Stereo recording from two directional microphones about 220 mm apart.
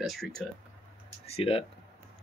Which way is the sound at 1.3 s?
25° left (ahead or behind).